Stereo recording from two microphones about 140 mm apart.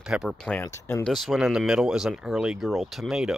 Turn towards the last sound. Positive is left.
turn(degrees=-5)  # may be behind; listen again after turning